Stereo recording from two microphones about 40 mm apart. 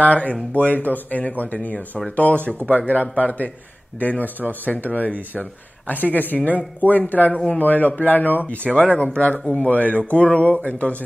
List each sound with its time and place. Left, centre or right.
0.0 s a man's voice: left
8.7 s speech: left